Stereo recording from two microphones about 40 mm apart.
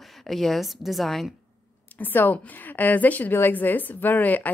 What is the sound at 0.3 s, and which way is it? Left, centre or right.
A woman's voice, centre.